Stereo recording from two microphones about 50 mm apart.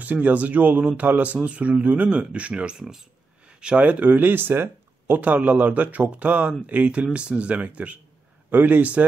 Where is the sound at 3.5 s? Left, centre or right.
Right.